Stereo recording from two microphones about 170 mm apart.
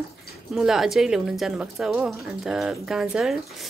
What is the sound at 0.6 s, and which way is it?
Speech, centre (ahead or behind).